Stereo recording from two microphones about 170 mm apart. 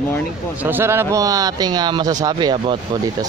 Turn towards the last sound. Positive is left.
turn(degrees=-25)  # may be behind; listen again after turning